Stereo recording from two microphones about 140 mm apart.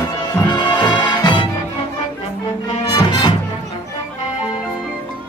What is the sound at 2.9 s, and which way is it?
Music, 35° left (ahead or behind).